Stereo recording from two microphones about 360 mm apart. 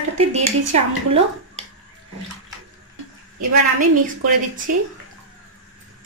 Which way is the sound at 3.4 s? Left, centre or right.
Right.